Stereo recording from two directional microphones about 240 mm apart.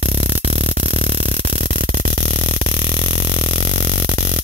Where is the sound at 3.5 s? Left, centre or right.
Right.